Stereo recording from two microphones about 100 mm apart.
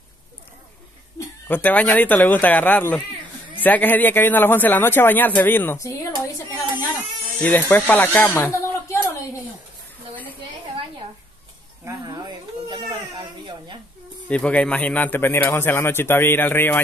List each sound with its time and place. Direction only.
1.5 s a man's voice: 15° left (ahead or behind)
5.8 s speech: 30° left (ahead or behind)
7.4 s speech: 20° left (ahead or behind)
12.1 s a sound: 45° right (ahead or behind)
14.3 s a man's voice: 10° left (ahead or behind)